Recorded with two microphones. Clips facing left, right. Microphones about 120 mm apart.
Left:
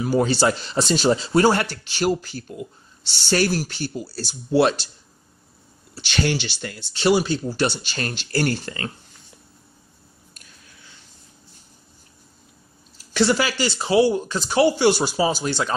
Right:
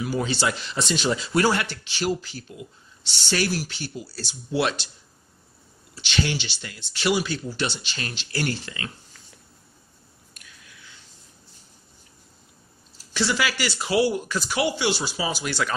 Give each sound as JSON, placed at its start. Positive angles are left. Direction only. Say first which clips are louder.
{"t": 0.0, "sound": "speech", "louder": "left 6 dB", "side_deg": 40}
{"t": 5.9, "sound": "speech", "louder": "left 3 dB", "side_deg": 45}
{"t": 6.9, "sound": "speech", "louder": "left 5 dB", "side_deg": 30}
{"t": 7.5, "sound": "speech", "louder": "left 6 dB", "side_deg": 45}
{"t": 10.3, "sound": "a sound", "louder": "right 2 dB", "side_deg": 35}
{"t": 13.1, "sound": "speech", "louder": "left 7 dB", "side_deg": 55}
{"t": 13.4, "sound": "speech", "louder": "left 3 dB", "side_deg": 30}
{"t": 15.4, "sound": "speech", "louder": "left 3 dB", "side_deg": 30}